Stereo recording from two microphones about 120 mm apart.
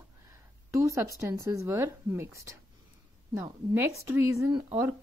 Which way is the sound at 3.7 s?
20° right (ahead or behind).